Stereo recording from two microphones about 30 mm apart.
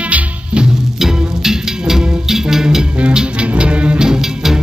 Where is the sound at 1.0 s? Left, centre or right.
Centre.